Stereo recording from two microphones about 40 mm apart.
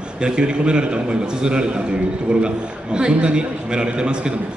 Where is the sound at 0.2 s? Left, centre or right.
Right.